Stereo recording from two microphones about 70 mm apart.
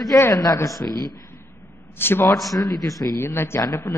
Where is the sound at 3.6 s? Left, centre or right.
Left.